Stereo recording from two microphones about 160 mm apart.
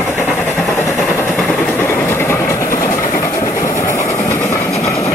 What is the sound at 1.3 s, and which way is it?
Train, 5° left (ahead or behind).